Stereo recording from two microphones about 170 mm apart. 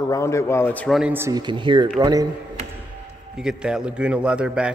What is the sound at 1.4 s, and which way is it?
Speech, 25° right (ahead or behind).